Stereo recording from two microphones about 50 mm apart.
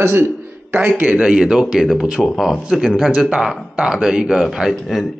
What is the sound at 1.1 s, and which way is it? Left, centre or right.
Speech, centre.